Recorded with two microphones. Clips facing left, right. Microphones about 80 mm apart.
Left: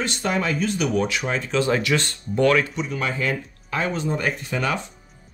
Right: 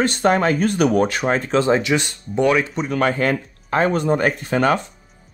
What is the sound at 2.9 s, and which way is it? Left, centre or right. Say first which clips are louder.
Speech: right 7 dB; right.